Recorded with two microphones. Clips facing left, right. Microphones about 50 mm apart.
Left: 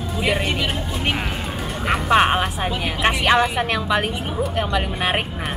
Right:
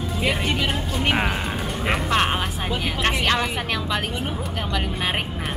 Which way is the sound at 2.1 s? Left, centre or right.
Centre.